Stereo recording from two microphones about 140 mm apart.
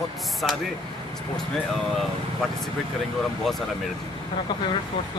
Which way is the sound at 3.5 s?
Centre (ahead or behind).